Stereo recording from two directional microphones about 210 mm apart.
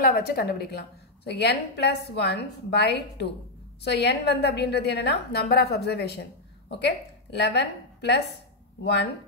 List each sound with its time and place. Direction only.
0.0 s a woman's voice: 45° left (ahead or behind)